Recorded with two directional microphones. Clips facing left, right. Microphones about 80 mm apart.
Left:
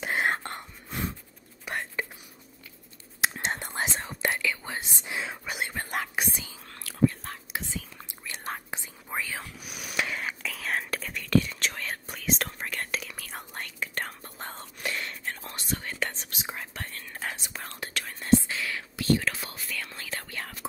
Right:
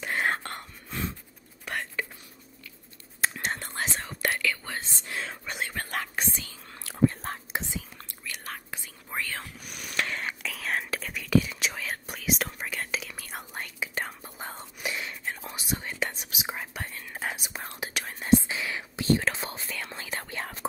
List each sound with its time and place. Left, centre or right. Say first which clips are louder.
0.0 s whispering: left 1 dB; centre
3.3 s whispering: left 1 dB; centre
6.8 s whispering: even; right
8.3 s whispering: left 3 dB; left
9.1 s whispering: left 1 dB; centre; by 20.6 s right